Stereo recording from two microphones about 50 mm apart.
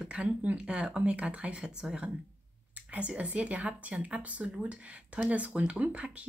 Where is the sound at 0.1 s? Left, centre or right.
Right.